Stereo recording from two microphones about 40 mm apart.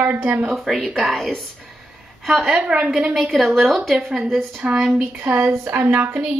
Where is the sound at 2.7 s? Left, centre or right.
Right.